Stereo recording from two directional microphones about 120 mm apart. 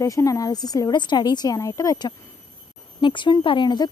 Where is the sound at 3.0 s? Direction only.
40° left (ahead or behind).